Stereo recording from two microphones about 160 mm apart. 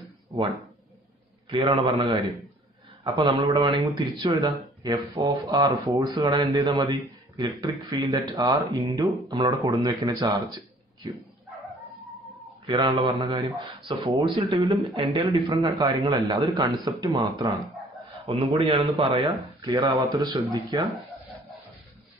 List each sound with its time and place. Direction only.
1.5 s speech: 30° right (ahead or behind)
12.6 s speech: 30° right (ahead or behind)
18.2 s speech: 35° right (ahead or behind)